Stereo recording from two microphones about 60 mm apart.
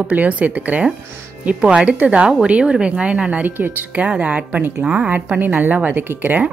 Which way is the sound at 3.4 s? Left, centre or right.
Right.